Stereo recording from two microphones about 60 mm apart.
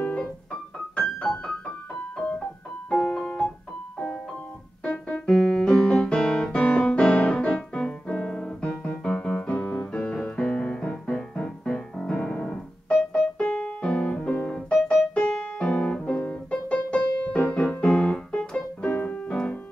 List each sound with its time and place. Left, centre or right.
0.0 s keyboard: centre
2.9 s piano: centre
4.8 s keyboard: left
5.3 s music: centre
12.2 s music: left
13.6 s piano: left
14.5 s music: centre
15.1 s piano: left
16.2 s music: left